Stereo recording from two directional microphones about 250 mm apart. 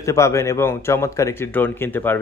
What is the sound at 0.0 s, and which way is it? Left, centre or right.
Speech, centre.